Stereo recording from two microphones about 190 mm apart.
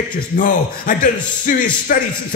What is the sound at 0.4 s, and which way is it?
A man's voice, 45° left (ahead or behind).